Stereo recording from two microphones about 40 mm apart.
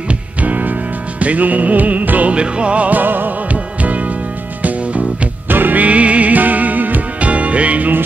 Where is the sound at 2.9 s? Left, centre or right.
Right.